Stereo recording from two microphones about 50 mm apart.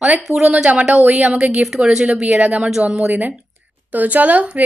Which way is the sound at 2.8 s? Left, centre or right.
Right.